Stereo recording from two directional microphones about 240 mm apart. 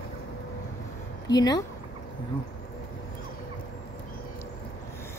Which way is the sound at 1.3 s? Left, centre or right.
Centre.